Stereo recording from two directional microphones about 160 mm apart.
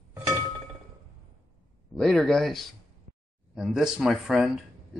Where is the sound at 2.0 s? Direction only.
Centre (ahead or behind).